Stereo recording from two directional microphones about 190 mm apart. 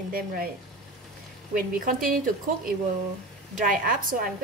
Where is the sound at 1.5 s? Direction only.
45° right (ahead or behind).